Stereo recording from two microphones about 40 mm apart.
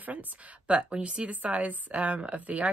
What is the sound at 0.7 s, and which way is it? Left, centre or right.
Speech, right.